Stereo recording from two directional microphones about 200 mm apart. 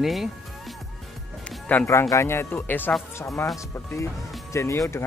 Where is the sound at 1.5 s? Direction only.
5° left (ahead or behind).